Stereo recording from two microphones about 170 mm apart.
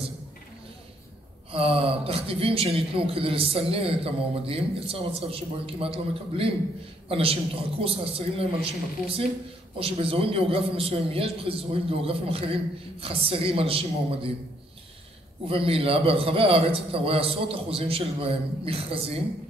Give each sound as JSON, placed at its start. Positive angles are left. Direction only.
{"t": 1.5, "sound": "a man's voice", "side_deg": -35}
{"t": 9.8, "sound": "a man's voice", "side_deg": -35}
{"t": 15.4, "sound": "a man's voice", "side_deg": -35}